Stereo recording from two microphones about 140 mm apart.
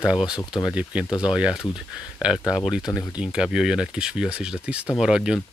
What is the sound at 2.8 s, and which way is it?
Speech, 25° left (ahead or behind).